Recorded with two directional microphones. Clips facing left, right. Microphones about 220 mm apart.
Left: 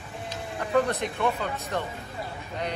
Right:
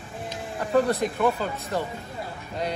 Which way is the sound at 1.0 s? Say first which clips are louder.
Right 5 dB; 40° right (ahead or behind).